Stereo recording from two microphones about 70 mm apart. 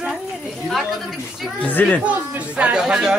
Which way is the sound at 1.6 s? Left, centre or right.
Left.